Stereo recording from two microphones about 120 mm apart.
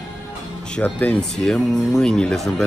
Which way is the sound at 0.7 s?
10° left (ahead or behind).